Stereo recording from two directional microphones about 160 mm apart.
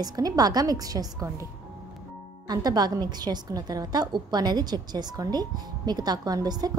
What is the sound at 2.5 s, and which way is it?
A woman's voice, 25° right (ahead or behind).